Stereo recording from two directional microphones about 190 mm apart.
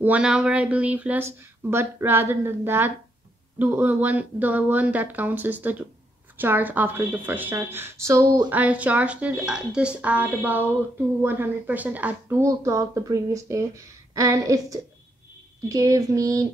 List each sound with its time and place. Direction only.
0.0 s speech: 5° right (ahead or behind)